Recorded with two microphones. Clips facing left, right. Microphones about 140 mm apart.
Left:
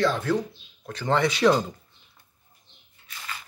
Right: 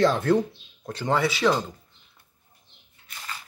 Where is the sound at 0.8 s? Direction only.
25° right (ahead or behind).